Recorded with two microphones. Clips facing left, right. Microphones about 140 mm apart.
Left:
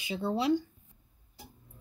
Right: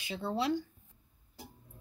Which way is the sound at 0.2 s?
10° left (ahead or behind).